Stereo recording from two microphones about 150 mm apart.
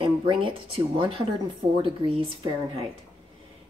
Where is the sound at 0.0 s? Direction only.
35° right (ahead or behind).